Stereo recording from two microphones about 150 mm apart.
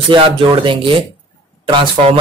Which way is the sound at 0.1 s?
35° right (ahead or behind).